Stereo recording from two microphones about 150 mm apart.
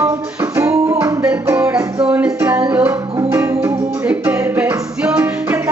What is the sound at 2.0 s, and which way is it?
Music, 10° right (ahead or behind).